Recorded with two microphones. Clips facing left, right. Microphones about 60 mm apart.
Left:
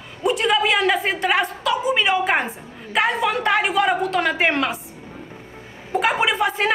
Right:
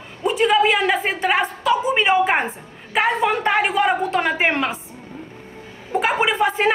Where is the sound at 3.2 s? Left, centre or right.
Right.